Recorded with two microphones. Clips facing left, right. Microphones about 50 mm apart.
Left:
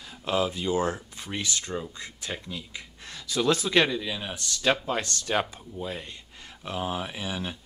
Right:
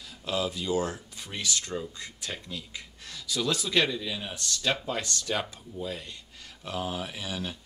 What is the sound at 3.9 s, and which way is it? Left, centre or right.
Speech, left.